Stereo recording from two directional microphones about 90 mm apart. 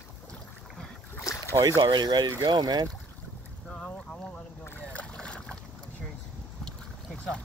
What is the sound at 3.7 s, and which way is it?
Boat, 10° left (ahead or behind).